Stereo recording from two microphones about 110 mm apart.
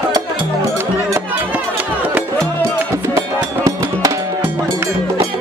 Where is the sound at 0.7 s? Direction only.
20° right (ahead or behind).